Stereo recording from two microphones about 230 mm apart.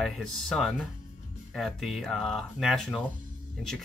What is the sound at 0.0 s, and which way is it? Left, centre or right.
Speech, centre.